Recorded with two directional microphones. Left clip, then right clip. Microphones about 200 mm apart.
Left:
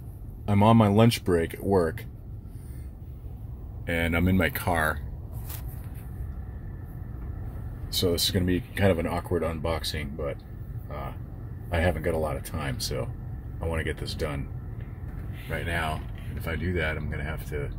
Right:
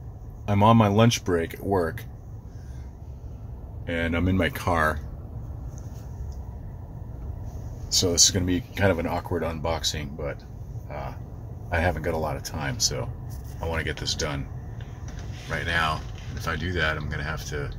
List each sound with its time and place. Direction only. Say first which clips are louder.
0.5 s speech: right 2 dB; centre (ahead or behind)
3.8 s speech: even; 5° left (ahead or behind)
7.9 s speech: right 5 dB; centre (ahead or behind)
11.7 s speech: right 1 dB; 5° left (ahead or behind)
15.5 s speech: right 5 dB; 10° left (ahead or behind)